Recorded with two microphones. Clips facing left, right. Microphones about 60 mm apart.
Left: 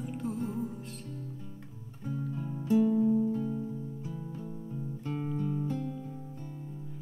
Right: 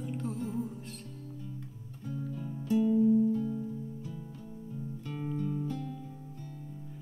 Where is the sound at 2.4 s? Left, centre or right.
Left.